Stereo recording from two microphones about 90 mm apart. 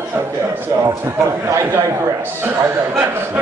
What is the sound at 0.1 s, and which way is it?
A man's voice, 25° right (ahead or behind).